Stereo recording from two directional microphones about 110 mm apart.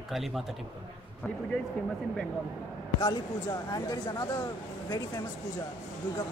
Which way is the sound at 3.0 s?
35° left (ahead or behind).